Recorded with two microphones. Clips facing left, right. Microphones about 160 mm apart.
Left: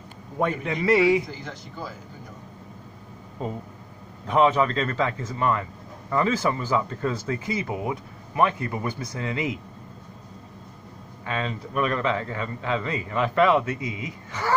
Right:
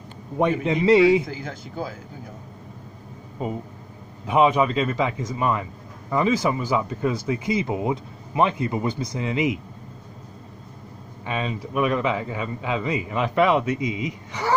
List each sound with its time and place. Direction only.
0.4 s a man's voice: 20° right (ahead or behind)
3.4 s a man's voice: 10° right (ahead or behind)
11.2 s a man's voice: 15° right (ahead or behind)